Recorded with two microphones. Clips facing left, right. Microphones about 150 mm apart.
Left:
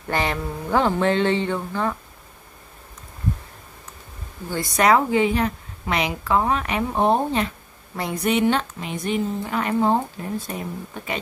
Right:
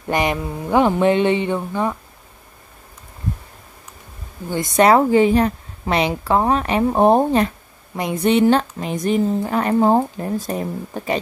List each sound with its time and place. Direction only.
0.1 s speech: 15° right (ahead or behind)
4.5 s a woman's voice: 20° right (ahead or behind); by 7.5 s 45° right (ahead or behind)
7.9 s a woman's voice: 20° right (ahead or behind); by 10.6 s 40° right (ahead or behind)